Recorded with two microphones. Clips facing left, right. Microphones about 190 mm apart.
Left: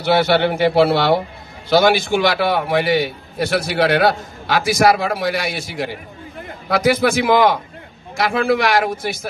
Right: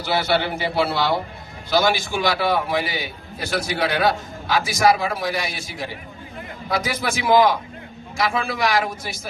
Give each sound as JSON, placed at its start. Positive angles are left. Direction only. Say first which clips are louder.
{"t": 0.0, "sound": "a man's voice", "louder": "left 6 dB", "side_deg": 65}